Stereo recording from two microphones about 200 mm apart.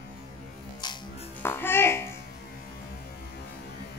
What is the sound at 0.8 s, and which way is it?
Music, 20° left (ahead or behind).